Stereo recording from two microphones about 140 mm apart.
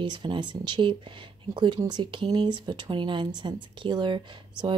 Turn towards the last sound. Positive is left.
turn(degrees=-35)  # may be behind; listen again after turning